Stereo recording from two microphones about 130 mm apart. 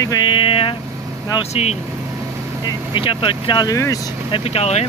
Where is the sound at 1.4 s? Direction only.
55° left (ahead or behind).